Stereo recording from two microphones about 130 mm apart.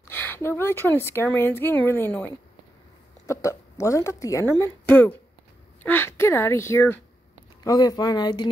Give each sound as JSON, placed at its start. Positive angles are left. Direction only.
{"t": 0.1, "sound": "a woman's voice", "side_deg": 15}
{"t": 7.6, "sound": "speech", "side_deg": 30}